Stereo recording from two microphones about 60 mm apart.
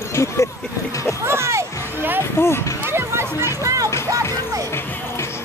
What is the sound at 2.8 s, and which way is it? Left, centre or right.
Music, right.